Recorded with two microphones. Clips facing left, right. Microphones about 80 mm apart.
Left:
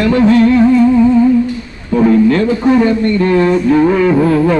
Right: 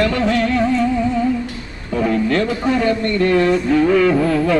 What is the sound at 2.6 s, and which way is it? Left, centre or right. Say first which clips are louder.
Mantra: left 7 dB; left.